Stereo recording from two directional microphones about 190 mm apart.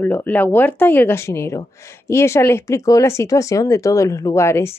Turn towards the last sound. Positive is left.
turn(degrees=15)  # may be behind; listen again after turning